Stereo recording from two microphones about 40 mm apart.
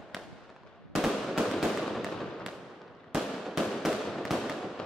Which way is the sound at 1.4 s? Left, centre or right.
Centre.